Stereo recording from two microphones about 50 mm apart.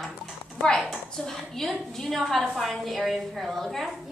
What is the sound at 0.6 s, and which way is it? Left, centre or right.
A woman's voice, centre.